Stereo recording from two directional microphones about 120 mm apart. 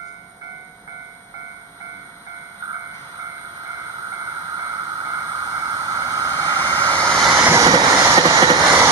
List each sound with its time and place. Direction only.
4.6 s vehicle: 30° right (ahead or behind)
7.0 s vehicle: 5° left (ahead or behind)
7.4 s vehicle: 30° right (ahead or behind)